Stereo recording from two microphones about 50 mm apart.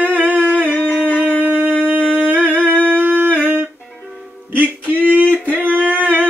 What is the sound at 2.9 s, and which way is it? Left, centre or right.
Humming, right.